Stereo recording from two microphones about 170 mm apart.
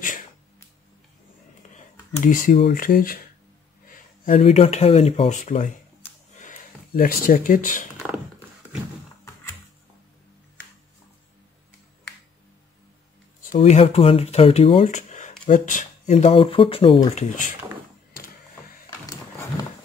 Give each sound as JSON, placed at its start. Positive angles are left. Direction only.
{"t": 2.2, "sound": "speech", "side_deg": 50}
{"t": 5.4, "sound": "speech", "side_deg": 50}
{"t": 6.3, "sound": "a sound", "side_deg": 55}
{"t": 13.6, "sound": "speech", "side_deg": 40}
{"t": 14.9, "sound": "a sound", "side_deg": 45}
{"t": 15.4, "sound": "speech", "side_deg": 50}